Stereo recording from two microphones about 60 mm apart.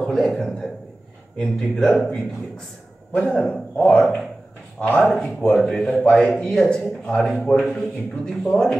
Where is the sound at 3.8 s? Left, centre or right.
Left.